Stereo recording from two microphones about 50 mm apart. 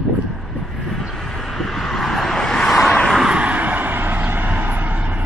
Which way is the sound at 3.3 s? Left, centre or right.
Right.